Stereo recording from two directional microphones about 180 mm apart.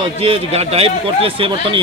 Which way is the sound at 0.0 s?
35° right (ahead or behind).